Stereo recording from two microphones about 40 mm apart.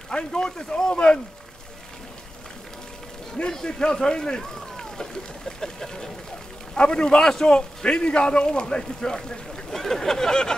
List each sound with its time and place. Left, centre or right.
0.1 s a man's voice: centre
3.4 s speech: centre
4.4 s a sound: centre
5.6 s speech: centre
6.7 s a man's voice: left